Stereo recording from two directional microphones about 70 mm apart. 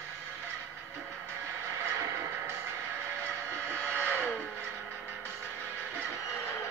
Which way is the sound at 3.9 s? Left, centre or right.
Left.